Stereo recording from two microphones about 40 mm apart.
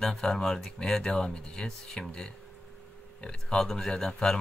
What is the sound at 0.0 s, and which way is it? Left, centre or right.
Speech, centre.